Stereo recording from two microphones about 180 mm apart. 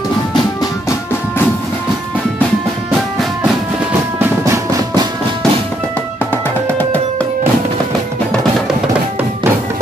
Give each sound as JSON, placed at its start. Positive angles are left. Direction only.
{"t": 0.3, "sound": "music", "side_deg": 20}
{"t": 4.2, "sound": "music", "side_deg": -15}
{"t": 6.7, "sound": "music", "side_deg": 10}